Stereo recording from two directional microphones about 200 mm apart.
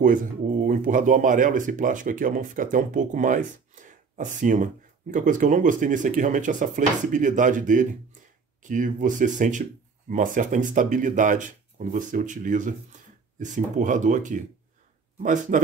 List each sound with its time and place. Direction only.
0.0 s speech: 40° right (ahead or behind)